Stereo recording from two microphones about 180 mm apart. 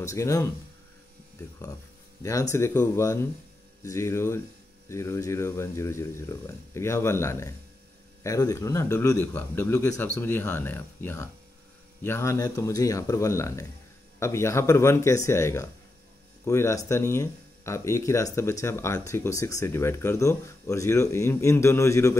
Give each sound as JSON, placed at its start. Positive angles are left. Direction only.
{"t": 0.0, "sound": "speech", "side_deg": 15}
{"t": 2.5, "sound": "speech", "side_deg": 15}